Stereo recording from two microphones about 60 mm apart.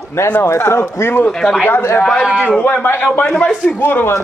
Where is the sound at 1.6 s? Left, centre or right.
Left.